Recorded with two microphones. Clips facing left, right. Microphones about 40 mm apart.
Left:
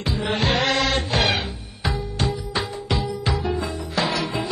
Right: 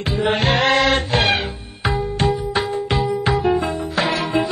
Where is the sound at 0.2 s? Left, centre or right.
Right.